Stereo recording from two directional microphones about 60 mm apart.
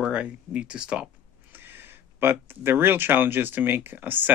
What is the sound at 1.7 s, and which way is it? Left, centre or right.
Speech, right.